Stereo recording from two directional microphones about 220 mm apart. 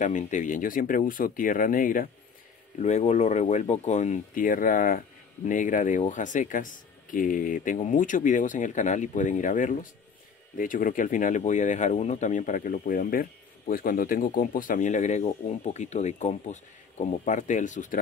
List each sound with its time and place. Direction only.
0.0 s speech: 35° left (ahead or behind)